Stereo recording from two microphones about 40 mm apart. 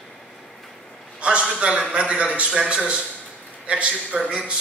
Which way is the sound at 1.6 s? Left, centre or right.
Right.